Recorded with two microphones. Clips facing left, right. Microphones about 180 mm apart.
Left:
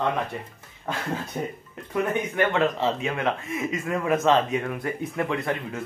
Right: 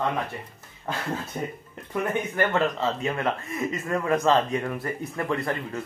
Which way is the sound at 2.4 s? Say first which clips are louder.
Left 1 dB; centre (ahead or behind).